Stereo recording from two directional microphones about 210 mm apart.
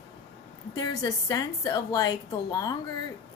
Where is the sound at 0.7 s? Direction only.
15° left (ahead or behind).